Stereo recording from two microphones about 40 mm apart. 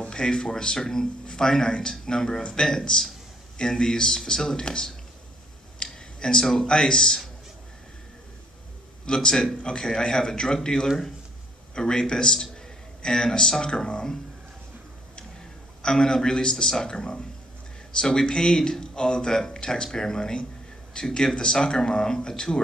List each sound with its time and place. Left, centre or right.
0.0 s a man's voice: left
5.8 s a sound: centre
6.4 s a man's voice: centre
9.0 s a man's voice: centre
15.8 s a man's voice: centre